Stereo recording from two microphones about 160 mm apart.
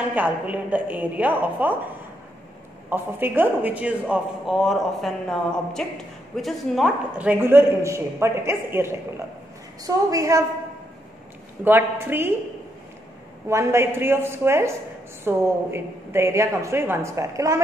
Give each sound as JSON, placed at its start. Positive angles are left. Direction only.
{"t": 0.1, "sound": "a man's voice", "side_deg": -10}
{"t": 2.9, "sound": "a man's voice", "side_deg": -10}
{"t": 11.6, "sound": "a man's voice", "side_deg": -15}
{"t": 13.5, "sound": "a man's voice", "side_deg": -15}